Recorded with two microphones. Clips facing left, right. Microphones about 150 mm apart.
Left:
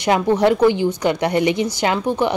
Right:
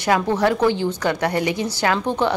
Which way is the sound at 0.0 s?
20° left (ahead or behind).